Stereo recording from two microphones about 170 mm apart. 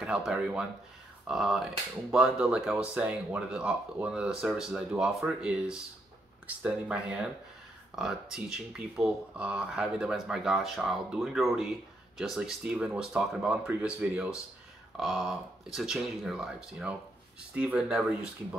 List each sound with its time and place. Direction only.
0.0 s speech: 5° right (ahead or behind)